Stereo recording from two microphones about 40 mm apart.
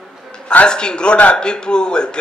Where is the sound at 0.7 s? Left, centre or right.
Left.